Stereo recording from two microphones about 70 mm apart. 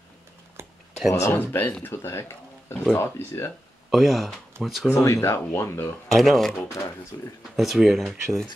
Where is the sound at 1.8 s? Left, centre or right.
Left.